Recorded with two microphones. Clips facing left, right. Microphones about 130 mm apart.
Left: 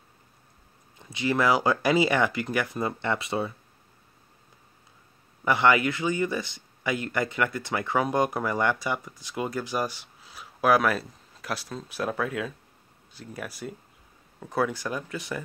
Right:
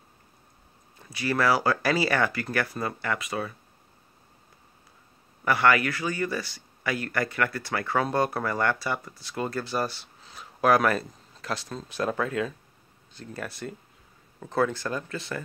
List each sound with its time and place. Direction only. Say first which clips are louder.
0.9 s speech: left 1 dB; 20° left (ahead or behind)
5.4 s a man's voice: left 1 dB; 20° left (ahead or behind)